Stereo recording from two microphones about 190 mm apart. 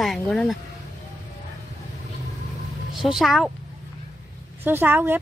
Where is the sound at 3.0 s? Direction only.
Centre (ahead or behind).